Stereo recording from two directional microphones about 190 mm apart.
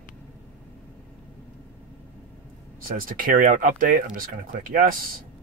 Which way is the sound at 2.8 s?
45° right (ahead or behind).